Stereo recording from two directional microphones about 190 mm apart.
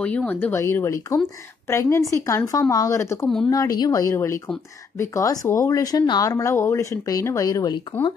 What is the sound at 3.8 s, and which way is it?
A woman's voice, 20° left (ahead or behind).